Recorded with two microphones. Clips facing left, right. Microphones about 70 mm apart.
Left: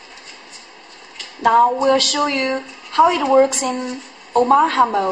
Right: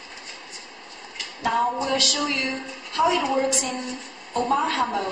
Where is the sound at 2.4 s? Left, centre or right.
Left.